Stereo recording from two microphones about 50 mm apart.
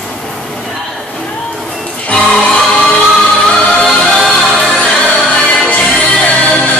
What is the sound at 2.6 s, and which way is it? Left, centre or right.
Music, centre.